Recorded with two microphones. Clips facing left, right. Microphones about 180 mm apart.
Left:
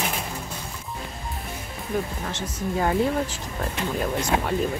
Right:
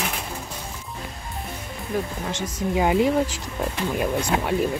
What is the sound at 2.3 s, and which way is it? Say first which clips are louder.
Speech: right 4 dB; 15° right (ahead or behind).